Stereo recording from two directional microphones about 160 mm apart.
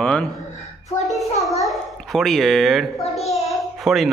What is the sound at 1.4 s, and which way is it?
A child's voice, centre (ahead or behind).